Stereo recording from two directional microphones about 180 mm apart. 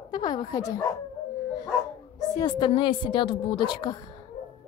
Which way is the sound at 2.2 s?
20° left (ahead or behind).